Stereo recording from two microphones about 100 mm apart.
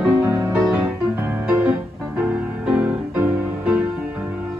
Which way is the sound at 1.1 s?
20° right (ahead or behind).